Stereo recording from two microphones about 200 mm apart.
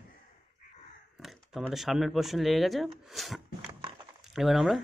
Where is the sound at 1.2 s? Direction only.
Centre (ahead or behind).